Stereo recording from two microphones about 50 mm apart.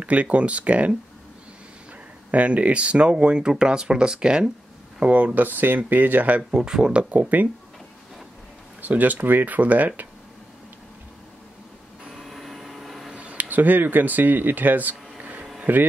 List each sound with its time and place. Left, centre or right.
0.0 s speech: right
2.3 s speech: right
5.0 s speech: right
6.5 s speech: centre; by 7.4 s right
8.8 s speech: right
12.1 s vehicle: centre
13.1 s speech: right